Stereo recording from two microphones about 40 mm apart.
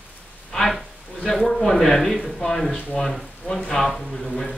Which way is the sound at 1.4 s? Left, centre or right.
Centre.